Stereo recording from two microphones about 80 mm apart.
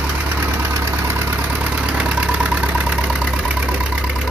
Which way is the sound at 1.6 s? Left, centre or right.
Centre.